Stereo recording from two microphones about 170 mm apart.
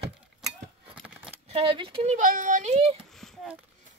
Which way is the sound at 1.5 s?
30° right (ahead or behind).